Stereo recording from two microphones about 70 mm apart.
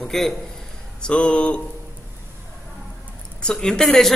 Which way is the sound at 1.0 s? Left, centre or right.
Centre.